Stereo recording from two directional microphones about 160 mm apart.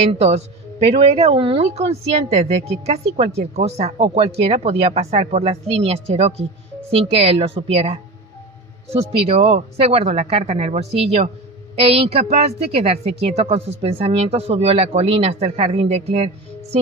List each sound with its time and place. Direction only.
0.2 s a woman's voice: 40° right (ahead or behind)